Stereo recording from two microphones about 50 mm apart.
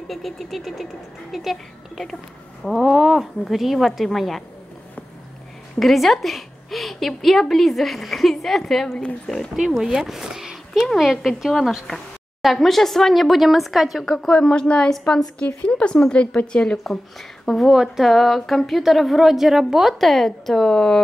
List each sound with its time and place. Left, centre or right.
0.1 s a woman's voice: centre
5.8 s a woman's voice: centre
8.9 s speech: centre
9.8 s a woman's voice: centre
14.0 s a woman's voice: centre
16.7 s a woman's voice: centre
17.6 s a woman's voice: centre
20.0 s speech: centre